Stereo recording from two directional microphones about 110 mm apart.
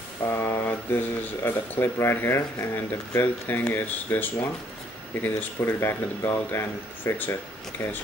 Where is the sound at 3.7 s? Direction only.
20° left (ahead or behind).